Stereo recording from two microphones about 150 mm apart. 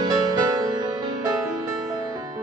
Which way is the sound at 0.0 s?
30° right (ahead or behind).